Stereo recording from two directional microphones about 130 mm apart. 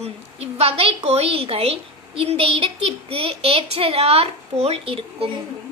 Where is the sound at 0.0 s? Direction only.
50° right (ahead or behind).